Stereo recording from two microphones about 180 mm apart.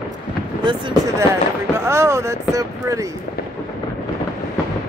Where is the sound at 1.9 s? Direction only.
15° right (ahead or behind).